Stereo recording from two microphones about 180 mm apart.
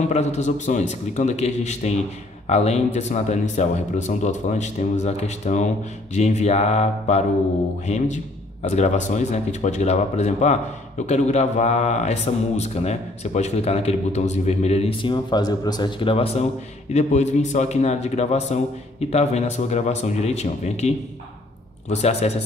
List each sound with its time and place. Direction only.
0.1 s speech: 40° left (ahead or behind)